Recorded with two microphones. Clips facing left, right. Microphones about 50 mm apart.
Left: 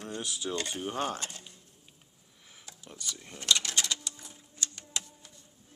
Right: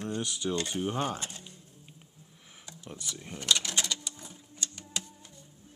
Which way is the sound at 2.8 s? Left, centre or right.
Right.